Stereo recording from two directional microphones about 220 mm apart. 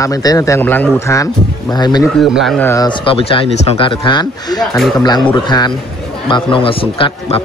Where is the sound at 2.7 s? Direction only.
20° left (ahead or behind).